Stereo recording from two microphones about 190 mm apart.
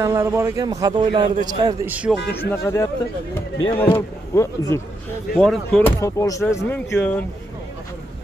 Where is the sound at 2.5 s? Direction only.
15° left (ahead or behind).